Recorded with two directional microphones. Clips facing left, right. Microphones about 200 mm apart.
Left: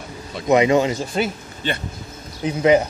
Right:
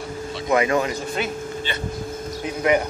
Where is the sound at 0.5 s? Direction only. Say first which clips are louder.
Left 5 dB; 20° left (ahead or behind).